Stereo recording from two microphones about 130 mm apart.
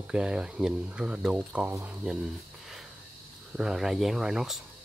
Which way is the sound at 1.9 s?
5° right (ahead or behind).